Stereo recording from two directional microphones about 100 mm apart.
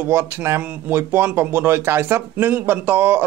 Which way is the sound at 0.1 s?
20° right (ahead or behind).